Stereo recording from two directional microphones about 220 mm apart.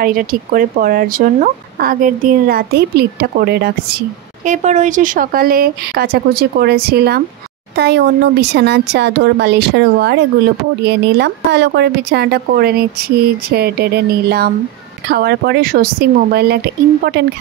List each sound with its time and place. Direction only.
0.0 s speech: 40° right (ahead or behind)
4.5 s speech: 30° right (ahead or behind)